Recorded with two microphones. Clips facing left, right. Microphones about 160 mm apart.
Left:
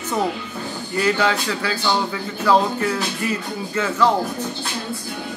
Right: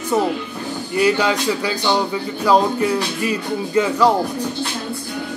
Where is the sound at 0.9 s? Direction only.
15° right (ahead or behind).